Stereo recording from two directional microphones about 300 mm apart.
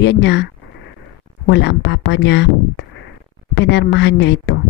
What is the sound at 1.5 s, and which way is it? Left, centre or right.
Speech, left.